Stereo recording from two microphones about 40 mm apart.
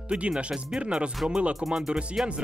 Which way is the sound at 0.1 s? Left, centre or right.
Right.